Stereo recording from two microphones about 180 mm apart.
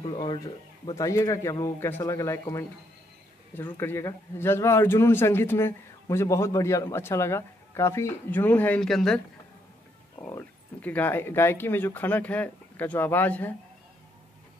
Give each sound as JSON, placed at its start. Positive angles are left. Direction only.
{"t": 0.0, "sound": "a man's voice", "side_deg": 25}
{"t": 3.7, "sound": "a man's voice", "side_deg": 15}
{"t": 10.2, "sound": "a man's voice", "side_deg": 10}